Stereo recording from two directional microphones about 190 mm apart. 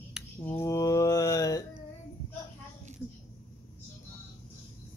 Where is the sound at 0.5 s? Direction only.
15° left (ahead or behind).